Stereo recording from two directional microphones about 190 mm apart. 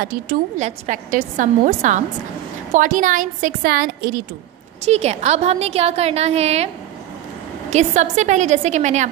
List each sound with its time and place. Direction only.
0.0 s a woman's voice: 50° right (ahead or behind)
4.8 s a woman's voice: 35° right (ahead or behind)
7.7 s a woman's voice: 40° right (ahead or behind)